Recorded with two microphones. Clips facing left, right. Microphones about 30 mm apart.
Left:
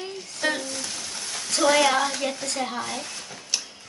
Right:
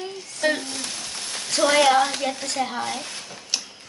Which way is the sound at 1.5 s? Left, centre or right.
Centre.